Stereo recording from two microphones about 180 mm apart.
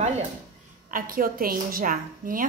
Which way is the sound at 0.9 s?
50° right (ahead or behind).